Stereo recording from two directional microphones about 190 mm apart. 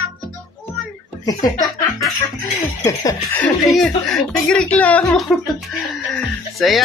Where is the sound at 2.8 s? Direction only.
15° left (ahead or behind).